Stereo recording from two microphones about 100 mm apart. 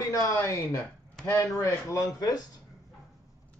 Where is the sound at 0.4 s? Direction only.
20° left (ahead or behind); by 2.4 s 40° left (ahead or behind).